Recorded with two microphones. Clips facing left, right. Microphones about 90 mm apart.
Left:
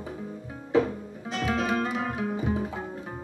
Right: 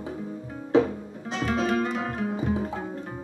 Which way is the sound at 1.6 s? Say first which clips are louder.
Right 2 dB; 5° left (ahead or behind).